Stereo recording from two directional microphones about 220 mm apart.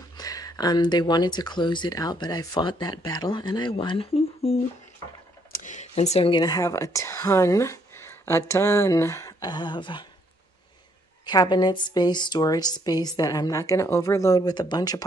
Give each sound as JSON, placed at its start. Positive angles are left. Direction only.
{"t": 0.2, "sound": "speech", "side_deg": 15}
{"t": 11.2, "sound": "a woman's voice", "side_deg": 20}